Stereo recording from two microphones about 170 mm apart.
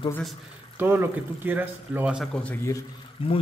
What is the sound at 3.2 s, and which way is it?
Speech, 30° left (ahead or behind).